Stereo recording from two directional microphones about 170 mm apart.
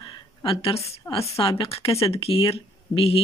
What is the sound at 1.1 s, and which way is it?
Speech, 35° left (ahead or behind).